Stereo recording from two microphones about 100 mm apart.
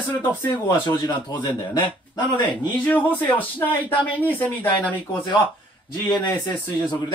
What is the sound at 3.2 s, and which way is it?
Speech, 20° left (ahead or behind).